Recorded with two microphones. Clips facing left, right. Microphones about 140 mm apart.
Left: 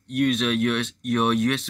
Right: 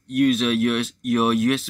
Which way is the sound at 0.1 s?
Centre (ahead or behind).